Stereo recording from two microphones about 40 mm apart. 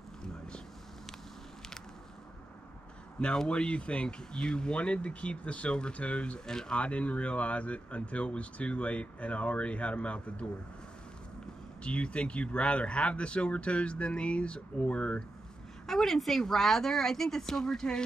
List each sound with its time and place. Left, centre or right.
3.4 s speech: left
6.4 s speech: centre
6.8 s speech: left
11.8 s speech: left
15.9 s speech: centre